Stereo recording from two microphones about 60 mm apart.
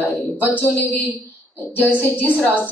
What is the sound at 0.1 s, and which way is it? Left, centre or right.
A woman's voice, left.